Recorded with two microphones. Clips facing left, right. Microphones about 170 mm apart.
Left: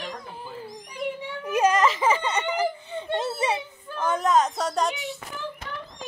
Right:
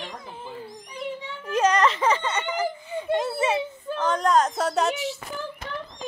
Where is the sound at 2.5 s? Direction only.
30° left (ahead or behind).